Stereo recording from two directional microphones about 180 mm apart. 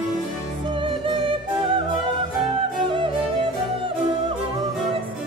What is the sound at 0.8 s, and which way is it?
Music, 30° right (ahead or behind).